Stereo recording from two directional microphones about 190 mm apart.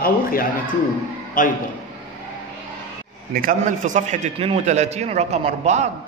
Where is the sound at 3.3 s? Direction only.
45° right (ahead or behind).